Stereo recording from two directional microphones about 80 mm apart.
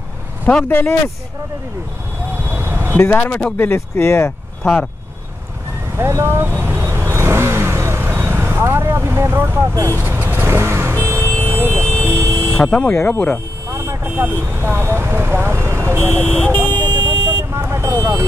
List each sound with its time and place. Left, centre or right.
0.7 s speech: left
2.5 s a sound: right
3.0 s speech: left
5.9 s vehicle: right
11.1 s vehicle: left
11.5 s music: right
12.0 s a sound: right
12.5 s speech: centre
12.9 s speech: left
13.7 s speech: right
16.1 s speech: left
16.4 s speech: right
16.7 s vehicle: right
17.6 s vehicle: right